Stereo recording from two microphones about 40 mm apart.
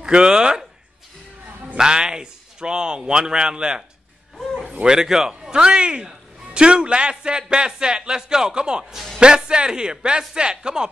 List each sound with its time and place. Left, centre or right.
0.0 s a man's voice: right
1.8 s a man's voice: centre
4.8 s a man's voice: centre